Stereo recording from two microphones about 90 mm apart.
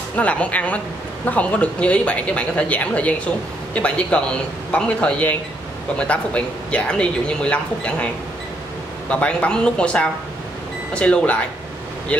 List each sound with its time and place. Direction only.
0.1 s speech: 15° left (ahead or behind)
9.1 s speech: 15° left (ahead or behind)